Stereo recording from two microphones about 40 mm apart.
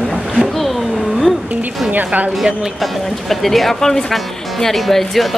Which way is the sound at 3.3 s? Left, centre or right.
Centre.